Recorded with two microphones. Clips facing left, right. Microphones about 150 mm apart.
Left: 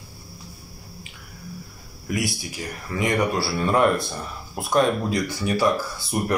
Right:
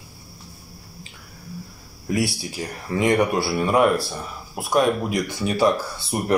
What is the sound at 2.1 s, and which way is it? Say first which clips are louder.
Speech: right 3 dB; 30° right (ahead or behind).